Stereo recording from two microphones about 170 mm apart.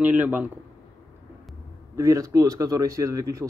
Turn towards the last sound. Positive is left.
turn(degrees=-20)  # may be behind; listen again after turning